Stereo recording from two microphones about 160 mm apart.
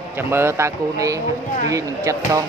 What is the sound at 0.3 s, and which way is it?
Speech, 15° right (ahead or behind).